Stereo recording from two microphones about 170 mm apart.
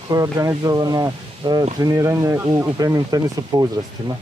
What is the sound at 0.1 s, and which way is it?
Speech, 20° right (ahead or behind).